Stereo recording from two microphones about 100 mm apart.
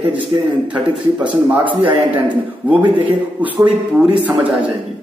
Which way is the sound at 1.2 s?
15° right (ahead or behind).